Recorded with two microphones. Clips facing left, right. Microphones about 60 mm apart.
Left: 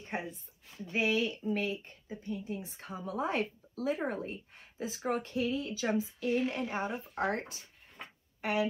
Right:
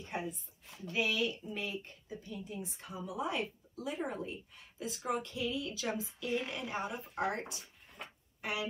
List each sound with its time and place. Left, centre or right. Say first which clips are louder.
0.1 s a woman's voice: left 1 dB; left